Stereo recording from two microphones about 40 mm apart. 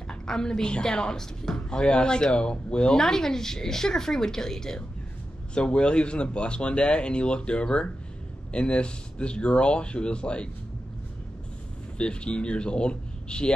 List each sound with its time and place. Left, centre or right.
0.3 s speech: centre
3.0 s speech: centre
5.5 s speech: left
12.0 s speech: left